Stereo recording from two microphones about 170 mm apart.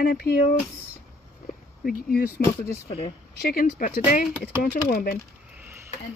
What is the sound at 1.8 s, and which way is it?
Speech, 60° left (ahead or behind).